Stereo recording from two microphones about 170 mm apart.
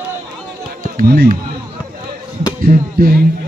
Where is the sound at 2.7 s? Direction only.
60° right (ahead or behind).